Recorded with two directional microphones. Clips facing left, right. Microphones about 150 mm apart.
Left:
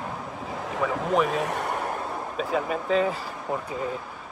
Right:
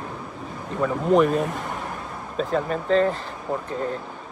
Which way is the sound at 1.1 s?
Centre (ahead or behind).